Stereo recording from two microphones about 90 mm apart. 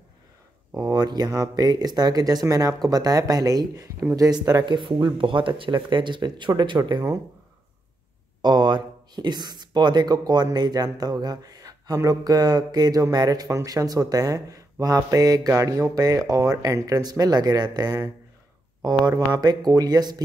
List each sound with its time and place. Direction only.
0.7 s speech: 45° right (ahead or behind); by 7.0 s 60° right (ahead or behind)
8.4 s speech: 55° right (ahead or behind)